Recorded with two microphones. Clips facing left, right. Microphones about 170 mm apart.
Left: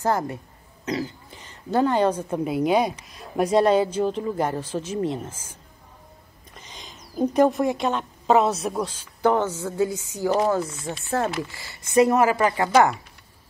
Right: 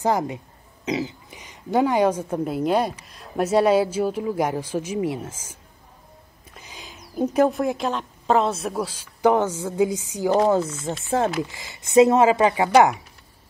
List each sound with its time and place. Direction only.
0.0 s a woman's voice: 15° right (ahead or behind)
2.4 s a woman's voice: centre (ahead or behind)
6.6 s a woman's voice: 10° right (ahead or behind)